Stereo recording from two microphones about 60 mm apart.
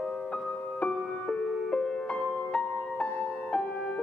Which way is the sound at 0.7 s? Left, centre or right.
Centre.